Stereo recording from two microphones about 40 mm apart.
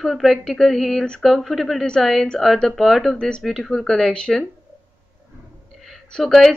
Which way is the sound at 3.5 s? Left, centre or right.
Centre.